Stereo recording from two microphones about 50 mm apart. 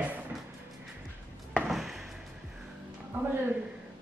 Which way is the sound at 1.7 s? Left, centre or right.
Centre.